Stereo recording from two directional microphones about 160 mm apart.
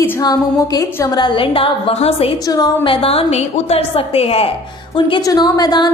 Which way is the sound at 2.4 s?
25° left (ahead or behind).